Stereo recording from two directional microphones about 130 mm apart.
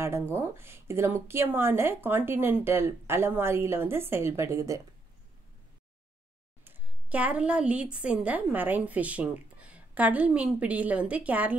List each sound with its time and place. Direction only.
0.0 s a woman's voice: 20° right (ahead or behind)
6.6 s a woman's voice: 15° right (ahead or behind)